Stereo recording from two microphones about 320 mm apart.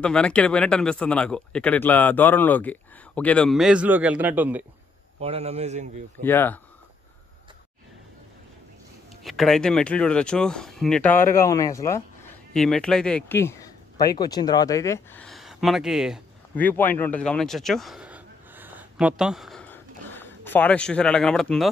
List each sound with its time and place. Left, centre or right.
0.0 s speech: centre
5.2 s a man's voice: centre
6.2 s speech: centre
9.2 s speech: centre